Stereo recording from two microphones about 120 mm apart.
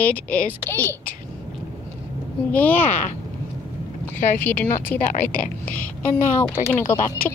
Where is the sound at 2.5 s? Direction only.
15° left (ahead or behind).